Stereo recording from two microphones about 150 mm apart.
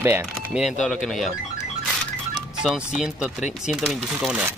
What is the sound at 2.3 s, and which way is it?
Music, 5° right (ahead or behind).